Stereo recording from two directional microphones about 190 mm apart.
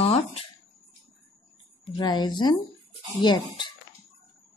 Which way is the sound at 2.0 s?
25° left (ahead or behind).